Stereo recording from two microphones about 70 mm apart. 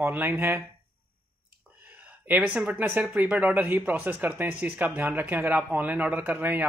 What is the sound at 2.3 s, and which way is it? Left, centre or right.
Speech, right.